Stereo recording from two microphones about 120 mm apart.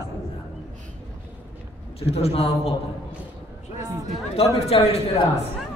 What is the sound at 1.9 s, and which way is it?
Speech, 55° left (ahead or behind).